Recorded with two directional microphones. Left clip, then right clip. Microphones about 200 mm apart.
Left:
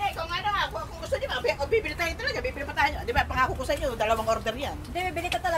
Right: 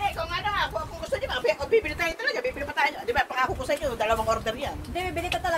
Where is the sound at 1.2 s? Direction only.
45° left (ahead or behind).